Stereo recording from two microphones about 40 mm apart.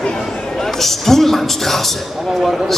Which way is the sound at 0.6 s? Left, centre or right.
Centre.